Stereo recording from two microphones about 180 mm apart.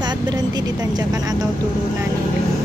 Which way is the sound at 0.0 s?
20° right (ahead or behind).